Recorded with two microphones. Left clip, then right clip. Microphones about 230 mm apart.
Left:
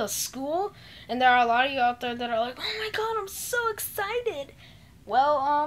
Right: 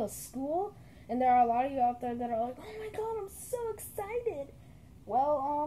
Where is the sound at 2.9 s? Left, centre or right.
Left.